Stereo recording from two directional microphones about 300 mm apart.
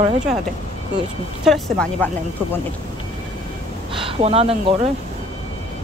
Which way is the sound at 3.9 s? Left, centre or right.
Centre.